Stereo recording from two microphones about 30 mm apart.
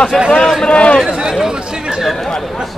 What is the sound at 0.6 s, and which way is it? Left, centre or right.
Speech, left.